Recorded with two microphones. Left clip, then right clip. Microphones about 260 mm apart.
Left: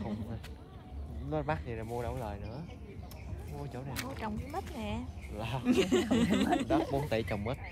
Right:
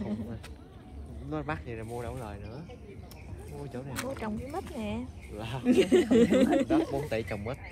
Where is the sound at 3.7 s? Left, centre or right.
Left.